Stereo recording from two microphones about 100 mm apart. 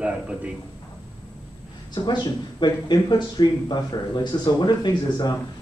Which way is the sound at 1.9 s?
45° left (ahead or behind).